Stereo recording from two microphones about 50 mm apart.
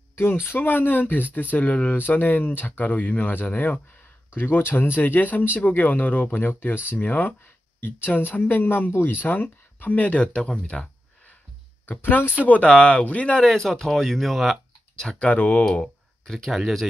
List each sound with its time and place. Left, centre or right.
0.1 s speech: left
4.3 s speech: left
12.0 s speech: left
12.6 s speech: left
13.4 s speech: centre
15.1 s speech: left
15.8 s a sound: centre
16.5 s speech: centre